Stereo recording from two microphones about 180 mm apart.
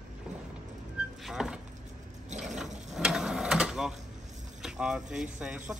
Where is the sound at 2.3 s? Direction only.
40° right (ahead or behind).